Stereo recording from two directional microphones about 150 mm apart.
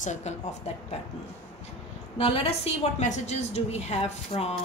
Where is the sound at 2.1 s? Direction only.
40° left (ahead or behind).